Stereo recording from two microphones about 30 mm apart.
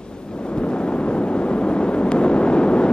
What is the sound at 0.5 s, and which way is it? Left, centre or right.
Vehicle, left.